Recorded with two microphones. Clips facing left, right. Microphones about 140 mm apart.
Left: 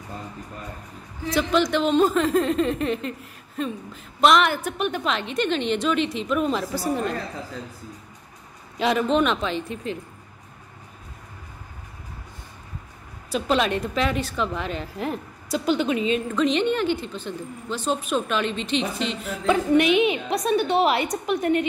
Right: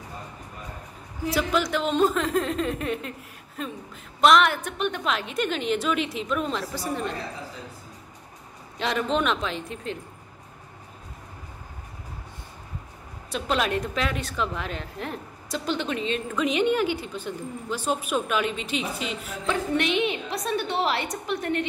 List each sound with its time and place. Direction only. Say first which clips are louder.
1.3 s speech: left 4 dB; 5° right (ahead or behind)
8.7 s speech: left 5 dB; 5° left (ahead or behind)
13.3 s a woman's voice: left 3 dB; centre (ahead or behind)
16.3 s a woman's voice: right 1 dB; 10° right (ahead or behind)
19.4 s a woman's voice: left 7 dB; 15° left (ahead or behind)